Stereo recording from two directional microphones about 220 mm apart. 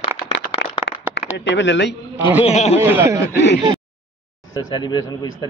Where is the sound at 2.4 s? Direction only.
30° left (ahead or behind).